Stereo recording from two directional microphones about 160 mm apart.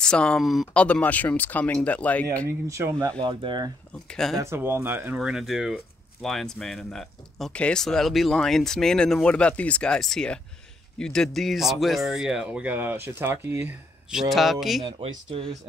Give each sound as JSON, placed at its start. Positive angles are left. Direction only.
{"t": 0.0, "sound": "speech", "side_deg": 5}
{"t": 2.7, "sound": "speech", "side_deg": -15}
{"t": 3.2, "sound": "speech", "side_deg": -30}
{"t": 4.1, "sound": "speech", "side_deg": 0}
{"t": 4.4, "sound": "speech", "side_deg": -15}
{"t": 14.3, "sound": "speech", "side_deg": 0}
{"t": 14.9, "sound": "speech", "side_deg": -35}